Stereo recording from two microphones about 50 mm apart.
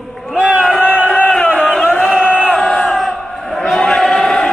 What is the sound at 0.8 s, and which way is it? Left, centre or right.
Crowd, right.